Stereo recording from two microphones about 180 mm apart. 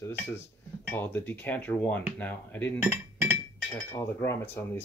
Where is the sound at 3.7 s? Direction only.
15° left (ahead or behind).